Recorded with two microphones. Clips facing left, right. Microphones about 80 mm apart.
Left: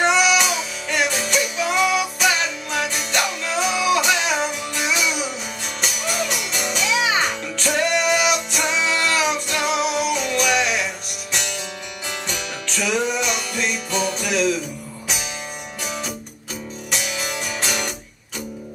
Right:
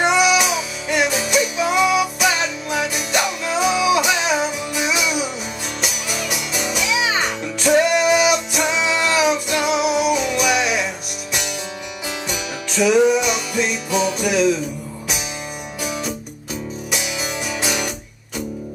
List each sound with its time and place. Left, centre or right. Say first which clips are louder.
0.0 s music: right 1 dB; centre
12.3 s music: right 2 dB; centre
16.9 s music: even; centre